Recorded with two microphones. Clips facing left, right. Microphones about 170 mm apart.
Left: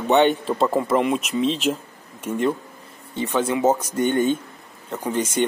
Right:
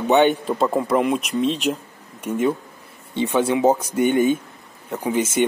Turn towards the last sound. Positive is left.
turn(degrees=-10)  # may be behind; listen again after turning